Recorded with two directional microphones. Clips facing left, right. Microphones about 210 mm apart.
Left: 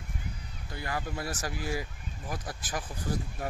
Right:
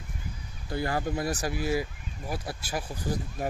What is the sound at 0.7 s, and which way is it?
Speech, 30° right (ahead or behind).